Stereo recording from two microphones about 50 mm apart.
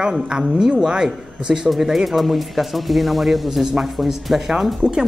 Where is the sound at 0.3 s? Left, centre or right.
Centre.